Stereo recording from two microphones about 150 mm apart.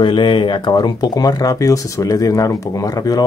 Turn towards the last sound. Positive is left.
turn(degrees=25)  # may be behind; listen again after turning